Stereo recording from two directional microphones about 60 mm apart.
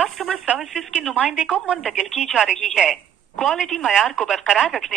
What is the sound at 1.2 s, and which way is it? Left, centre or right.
Speech, centre.